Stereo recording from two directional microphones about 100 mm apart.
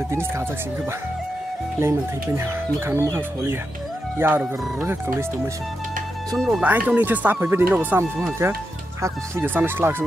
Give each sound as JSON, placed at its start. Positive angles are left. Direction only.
{"t": 1.8, "sound": "speech", "side_deg": -30}
{"t": 6.3, "sound": "speech", "side_deg": 0}
{"t": 6.6, "sound": "speech", "side_deg": -15}